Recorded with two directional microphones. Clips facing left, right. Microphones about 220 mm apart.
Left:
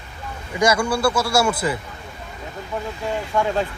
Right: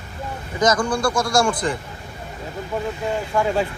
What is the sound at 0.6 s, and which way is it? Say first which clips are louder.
A man's voice: left 1 dB; 10° left (ahead or behind).